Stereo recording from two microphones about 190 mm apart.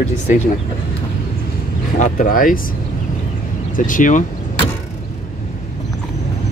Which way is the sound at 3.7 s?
45° left (ahead or behind).